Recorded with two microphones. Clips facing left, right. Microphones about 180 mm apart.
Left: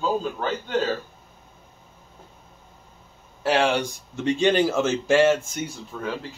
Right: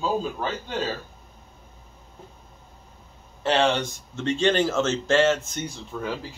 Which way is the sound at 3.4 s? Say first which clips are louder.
Left 1 dB; 10° left (ahead or behind).